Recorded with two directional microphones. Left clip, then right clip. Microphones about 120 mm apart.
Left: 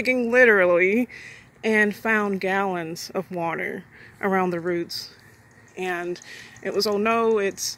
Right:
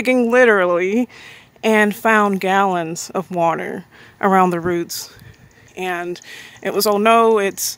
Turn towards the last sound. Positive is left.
turn(degrees=-60)  # may be behind; listen again after turning